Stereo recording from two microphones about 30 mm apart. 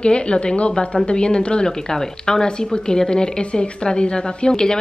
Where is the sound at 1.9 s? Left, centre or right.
Centre.